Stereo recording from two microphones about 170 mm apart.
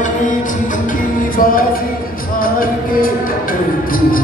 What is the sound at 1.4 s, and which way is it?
Music, 55° left (ahead or behind).